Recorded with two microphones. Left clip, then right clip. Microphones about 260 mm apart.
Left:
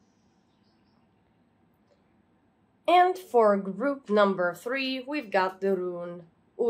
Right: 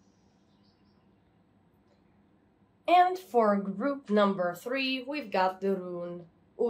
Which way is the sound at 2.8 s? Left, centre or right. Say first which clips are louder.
Left 2 dB; left.